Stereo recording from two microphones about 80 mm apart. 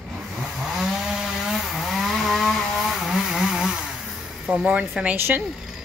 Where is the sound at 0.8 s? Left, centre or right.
Centre.